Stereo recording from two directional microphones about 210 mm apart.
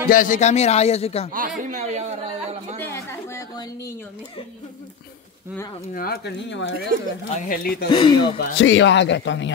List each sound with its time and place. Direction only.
0.1 s a man's voice: 40° left (ahead or behind)
1.6 s speech: 35° right (ahead or behind)
2.8 s a woman's voice: 10° left (ahead or behind)
5.9 s speech: 50° left (ahead or behind)
7.3 s speech: 45° left (ahead or behind)
7.9 s speech: 25° left (ahead or behind)
8.4 s a man's voice: 60° left (ahead or behind)